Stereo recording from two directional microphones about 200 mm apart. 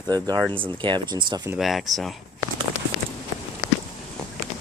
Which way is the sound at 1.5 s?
Centre (ahead or behind).